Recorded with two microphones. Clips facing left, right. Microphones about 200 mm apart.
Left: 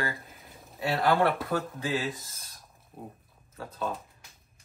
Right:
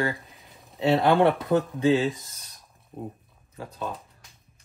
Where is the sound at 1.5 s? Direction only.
20° right (ahead or behind).